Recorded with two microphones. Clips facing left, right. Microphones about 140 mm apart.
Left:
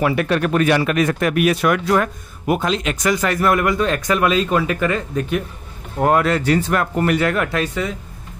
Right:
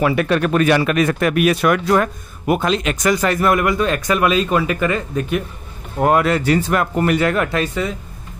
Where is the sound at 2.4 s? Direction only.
60° right (ahead or behind).